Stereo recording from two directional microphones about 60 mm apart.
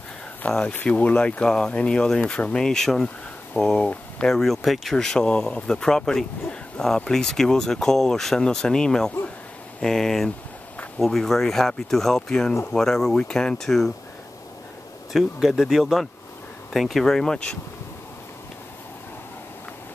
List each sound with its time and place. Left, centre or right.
0.4 s speech: left
3.6 s speech: centre
15.1 s speech: centre